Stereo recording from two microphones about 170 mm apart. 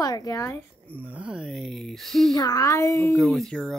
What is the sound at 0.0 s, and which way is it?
Speech, 20° left (ahead or behind).